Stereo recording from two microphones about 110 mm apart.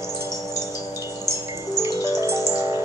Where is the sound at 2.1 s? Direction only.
25° right (ahead or behind).